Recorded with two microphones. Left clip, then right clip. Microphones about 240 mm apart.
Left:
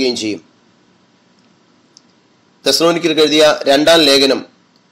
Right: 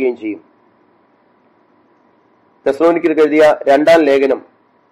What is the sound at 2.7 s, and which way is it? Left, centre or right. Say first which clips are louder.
A man's voice: even; left.